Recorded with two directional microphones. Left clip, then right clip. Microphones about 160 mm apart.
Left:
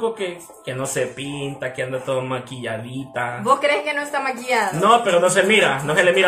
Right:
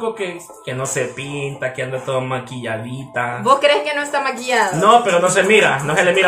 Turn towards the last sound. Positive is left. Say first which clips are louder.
# right 1 dB
turn(degrees=0)  # may be behind; listen again after turning